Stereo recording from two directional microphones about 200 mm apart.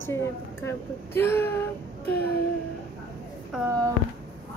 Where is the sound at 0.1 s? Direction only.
10° left (ahead or behind).